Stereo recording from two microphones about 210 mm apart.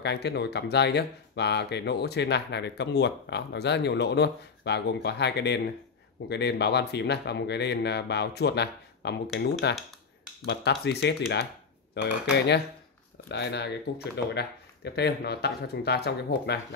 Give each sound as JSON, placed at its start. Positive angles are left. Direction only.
{"t": 0.0, "sound": "speech", "side_deg": 50}